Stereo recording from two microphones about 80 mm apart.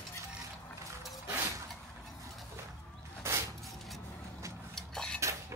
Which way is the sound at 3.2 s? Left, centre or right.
Right.